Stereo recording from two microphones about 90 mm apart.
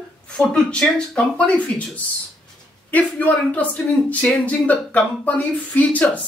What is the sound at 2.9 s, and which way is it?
Speech, 15° left (ahead or behind).